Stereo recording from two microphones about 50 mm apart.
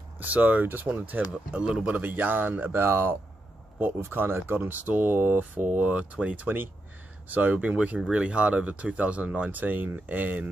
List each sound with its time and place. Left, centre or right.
0.2 s speech: right
1.6 s speech: centre
2.0 s speech: right
2.7 s speech: right
4.7 s speech: right